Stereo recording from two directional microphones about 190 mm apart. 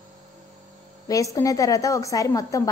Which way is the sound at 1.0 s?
20° left (ahead or behind).